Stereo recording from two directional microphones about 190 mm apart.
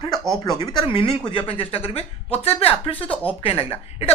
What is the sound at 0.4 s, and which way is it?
Speech, 20° left (ahead or behind).